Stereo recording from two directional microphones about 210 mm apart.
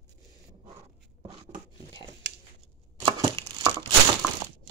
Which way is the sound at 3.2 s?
20° right (ahead or behind).